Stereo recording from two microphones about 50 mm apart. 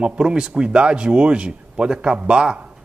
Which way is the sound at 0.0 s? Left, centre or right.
Centre.